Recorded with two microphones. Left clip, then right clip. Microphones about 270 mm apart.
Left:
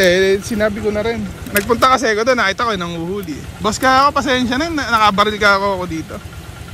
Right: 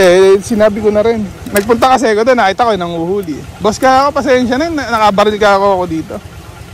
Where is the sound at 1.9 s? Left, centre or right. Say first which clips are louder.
Right 5 dB; centre.